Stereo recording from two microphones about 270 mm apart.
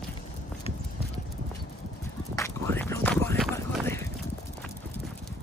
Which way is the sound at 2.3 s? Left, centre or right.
Centre.